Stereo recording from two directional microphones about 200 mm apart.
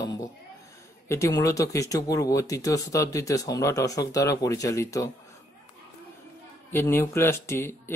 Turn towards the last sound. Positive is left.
turn(degrees=15)  # may be behind; listen again after turning